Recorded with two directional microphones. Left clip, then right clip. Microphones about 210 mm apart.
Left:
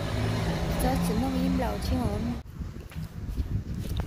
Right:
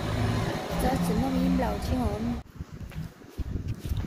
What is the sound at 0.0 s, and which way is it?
Vehicle, 55° right (ahead or behind).